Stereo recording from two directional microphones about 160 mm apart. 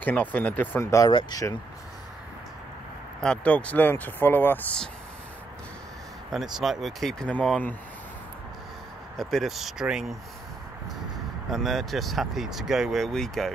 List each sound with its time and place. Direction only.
0.0 s speech: 10° left (ahead or behind); by 1.6 s 25° left (ahead or behind)
3.2 s speech: 5° left (ahead or behind)
6.3 s speech: centre (ahead or behind)
9.1 s speech: centre (ahead or behind)
11.5 s speech: centre (ahead or behind)